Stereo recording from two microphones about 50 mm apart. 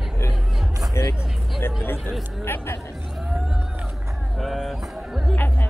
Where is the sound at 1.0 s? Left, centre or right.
Left.